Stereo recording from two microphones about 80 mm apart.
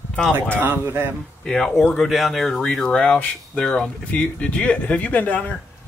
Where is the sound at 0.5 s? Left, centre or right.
Right.